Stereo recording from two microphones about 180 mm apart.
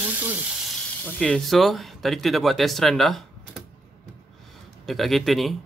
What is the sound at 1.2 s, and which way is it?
Speech, centre (ahead or behind).